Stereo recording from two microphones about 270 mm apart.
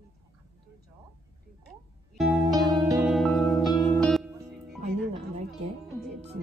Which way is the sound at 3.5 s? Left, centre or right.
Centre.